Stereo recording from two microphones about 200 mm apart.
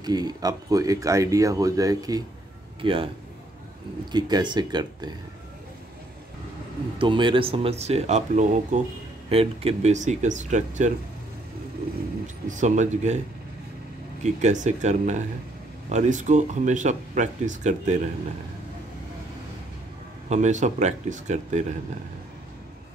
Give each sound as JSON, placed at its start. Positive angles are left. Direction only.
{"t": 0.0, "sound": "speech", "side_deg": -20}
{"t": 4.1, "sound": "speech", "side_deg": -20}
{"t": 7.0, "sound": "speech", "side_deg": -25}
{"t": 12.4, "sound": "speech", "side_deg": -35}
{"t": 14.2, "sound": "speech", "side_deg": -35}
{"t": 20.2, "sound": "speech", "side_deg": -35}